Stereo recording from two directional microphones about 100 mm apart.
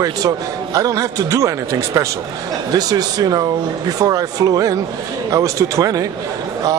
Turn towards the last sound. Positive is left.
turn(degrees=-35)  # may be behind; listen again after turning